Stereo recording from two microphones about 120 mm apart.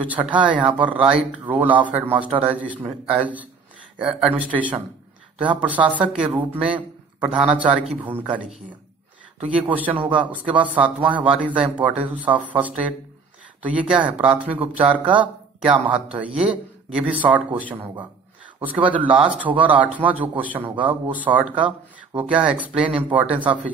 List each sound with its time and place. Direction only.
0.0 s a man's voice: 10° right (ahead or behind)